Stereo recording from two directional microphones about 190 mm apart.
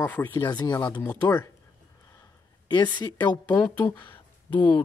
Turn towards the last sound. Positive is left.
turn(degrees=10)  # may be behind; listen again after turning